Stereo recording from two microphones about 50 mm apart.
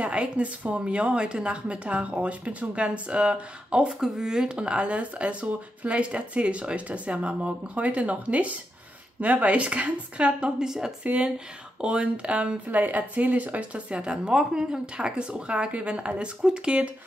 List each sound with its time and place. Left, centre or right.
0.0 s a woman's voice: right